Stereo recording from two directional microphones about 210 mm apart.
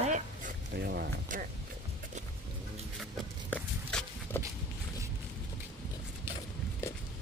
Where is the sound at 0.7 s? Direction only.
50° right (ahead or behind).